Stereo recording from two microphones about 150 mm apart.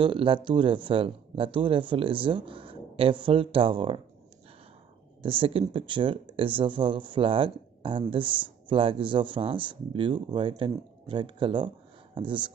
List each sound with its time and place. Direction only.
0.0 s speech: 35° right (ahead or behind)
5.2 s speech: 35° right (ahead or behind)